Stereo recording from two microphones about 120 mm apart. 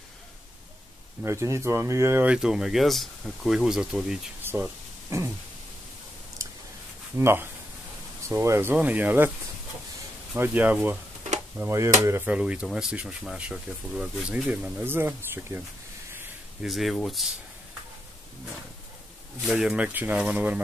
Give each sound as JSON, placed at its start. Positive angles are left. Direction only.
{"t": 1.2, "sound": "speech", "side_deg": -25}
{"t": 2.3, "sound": "speech", "side_deg": -5}
{"t": 4.4, "sound": "a sound", "side_deg": -15}
{"t": 5.1, "sound": "speech", "side_deg": -25}
{"t": 6.4, "sound": "a sound", "side_deg": -25}
{"t": 7.2, "sound": "speech", "side_deg": -20}
{"t": 10.3, "sound": "speech", "side_deg": -15}
{"t": 11.6, "sound": "speech", "side_deg": -25}
{"t": 12.3, "sound": "speech", "side_deg": -10}
{"t": 16.6, "sound": "speech", "side_deg": 0}
{"t": 19.5, "sound": "speech", "side_deg": -10}